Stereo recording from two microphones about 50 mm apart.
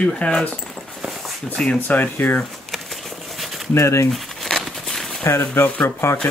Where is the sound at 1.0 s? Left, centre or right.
Centre.